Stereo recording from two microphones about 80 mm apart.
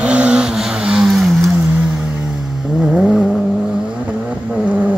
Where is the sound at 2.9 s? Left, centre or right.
Centre.